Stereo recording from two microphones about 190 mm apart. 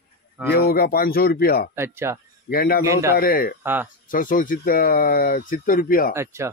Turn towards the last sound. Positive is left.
turn(degrees=45)  # may be behind; listen again after turning